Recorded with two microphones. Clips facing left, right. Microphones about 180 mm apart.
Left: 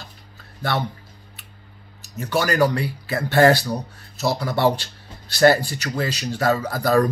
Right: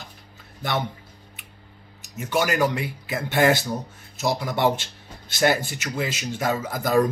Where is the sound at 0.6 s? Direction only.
15° right (ahead or behind).